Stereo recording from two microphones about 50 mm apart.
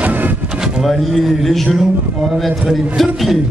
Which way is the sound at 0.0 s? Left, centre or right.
Right.